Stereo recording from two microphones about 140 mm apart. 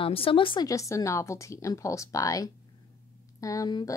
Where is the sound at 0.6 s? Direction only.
20° left (ahead or behind).